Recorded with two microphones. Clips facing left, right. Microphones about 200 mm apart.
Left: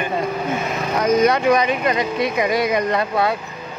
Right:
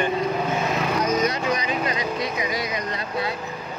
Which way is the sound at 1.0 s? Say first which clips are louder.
Left 11 dB; 60° left (ahead or behind).